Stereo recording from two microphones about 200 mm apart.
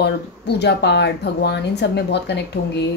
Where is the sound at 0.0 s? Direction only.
55° left (ahead or behind).